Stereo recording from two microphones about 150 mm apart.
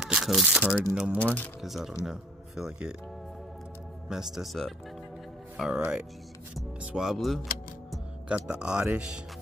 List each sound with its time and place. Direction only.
0.0 s speech: 5° right (ahead or behind)
1.1 s speech: 10° left (ahead or behind)
1.6 s speech: centre (ahead or behind)
4.1 s speech: 5° right (ahead or behind)
7.9 s music: 5° right (ahead or behind)
8.9 s speech: 10° right (ahead or behind)